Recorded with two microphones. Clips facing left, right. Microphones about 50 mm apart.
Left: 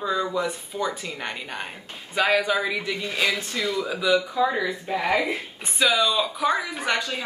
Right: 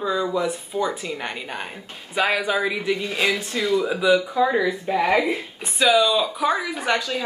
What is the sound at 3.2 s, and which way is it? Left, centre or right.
Speech, right.